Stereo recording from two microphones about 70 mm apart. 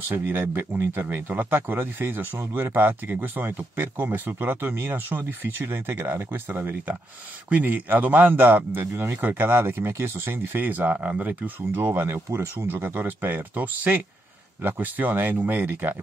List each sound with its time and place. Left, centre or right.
0.1 s a man's voice: right